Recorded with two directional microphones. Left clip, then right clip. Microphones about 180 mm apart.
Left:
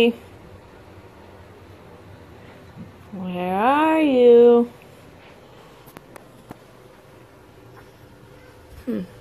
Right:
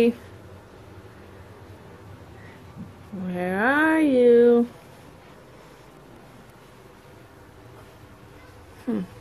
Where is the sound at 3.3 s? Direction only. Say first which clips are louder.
Left 3 dB; 35° right (ahead or behind).